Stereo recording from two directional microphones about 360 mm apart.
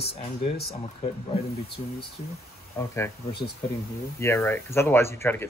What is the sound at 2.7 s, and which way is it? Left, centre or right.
Speech, centre.